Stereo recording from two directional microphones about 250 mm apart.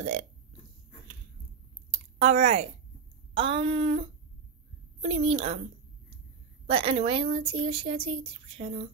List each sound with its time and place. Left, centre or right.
0.0 s speech: right
1.9 s a sound: right
3.3 s speech: right
5.0 s speech: right
6.7 s speech: right